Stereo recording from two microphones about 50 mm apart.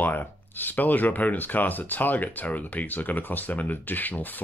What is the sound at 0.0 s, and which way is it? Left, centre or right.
Speech, left.